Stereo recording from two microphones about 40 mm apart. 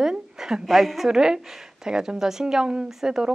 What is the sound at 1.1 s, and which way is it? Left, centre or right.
A woman's voice, centre.